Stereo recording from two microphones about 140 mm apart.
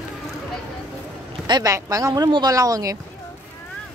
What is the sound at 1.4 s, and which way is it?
Speech, 30° right (ahead or behind).